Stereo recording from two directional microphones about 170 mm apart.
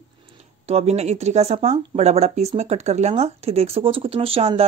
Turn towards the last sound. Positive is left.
turn(degrees=-35)  # may be behind; listen again after turning